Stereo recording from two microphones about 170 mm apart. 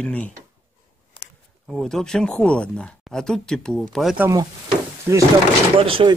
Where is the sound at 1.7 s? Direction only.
Centre (ahead or behind).